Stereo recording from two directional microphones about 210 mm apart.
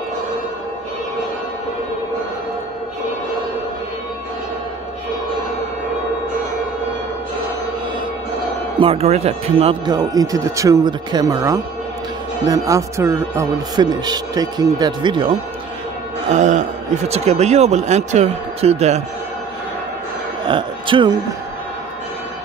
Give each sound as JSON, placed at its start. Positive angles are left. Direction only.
{"t": 8.7, "sound": "speech", "side_deg": -25}
{"t": 16.3, "sound": "a man's voice", "side_deg": -35}
{"t": 20.4, "sound": "speech", "side_deg": -25}